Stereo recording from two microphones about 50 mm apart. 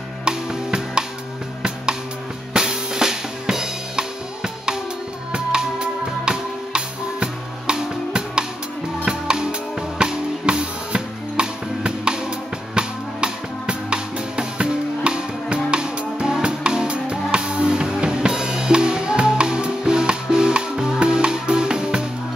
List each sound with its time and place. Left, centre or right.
0.2 s music: centre
2.5 s drum kit: centre
5.3 s music: centre